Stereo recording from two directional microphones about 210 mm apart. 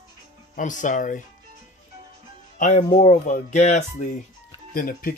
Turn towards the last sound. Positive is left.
turn(degrees=45)  # may be behind; listen again after turning